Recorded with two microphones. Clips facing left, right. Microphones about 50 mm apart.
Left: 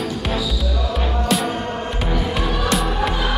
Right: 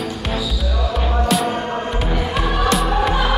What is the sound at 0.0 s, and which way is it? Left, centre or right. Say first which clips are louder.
Music: left 1 dB; centre.